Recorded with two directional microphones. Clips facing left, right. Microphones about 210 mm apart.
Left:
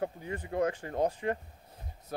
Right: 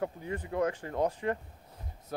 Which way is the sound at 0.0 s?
30° left (ahead or behind).